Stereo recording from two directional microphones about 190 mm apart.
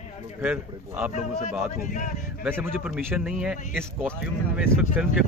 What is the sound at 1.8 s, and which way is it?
Speech, 40° left (ahead or behind).